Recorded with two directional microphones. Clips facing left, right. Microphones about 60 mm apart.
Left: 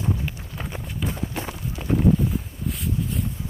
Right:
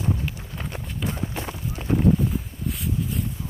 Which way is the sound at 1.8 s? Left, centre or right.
Centre.